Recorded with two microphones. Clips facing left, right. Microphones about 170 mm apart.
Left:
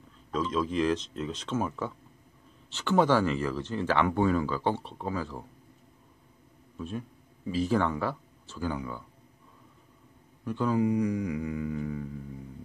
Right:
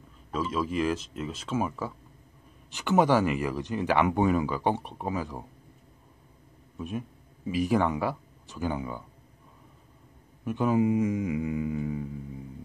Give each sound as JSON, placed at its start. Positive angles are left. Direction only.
{"t": 0.3, "sound": "speech", "side_deg": -5}
{"t": 6.8, "sound": "speech", "side_deg": -15}
{"t": 10.4, "sound": "speech", "side_deg": -20}